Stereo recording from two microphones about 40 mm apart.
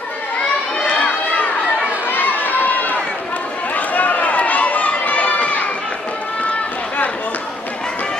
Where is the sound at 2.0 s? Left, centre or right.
Left.